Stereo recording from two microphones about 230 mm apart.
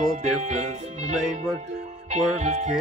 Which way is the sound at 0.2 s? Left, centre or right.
Right.